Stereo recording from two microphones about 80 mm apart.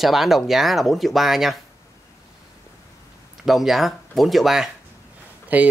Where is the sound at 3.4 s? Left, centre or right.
Centre.